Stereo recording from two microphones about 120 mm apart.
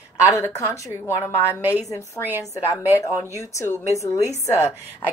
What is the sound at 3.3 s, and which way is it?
Speech, 20° left (ahead or behind).